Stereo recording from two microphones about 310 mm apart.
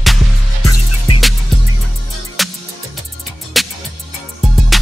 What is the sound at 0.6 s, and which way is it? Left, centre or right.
Music, left.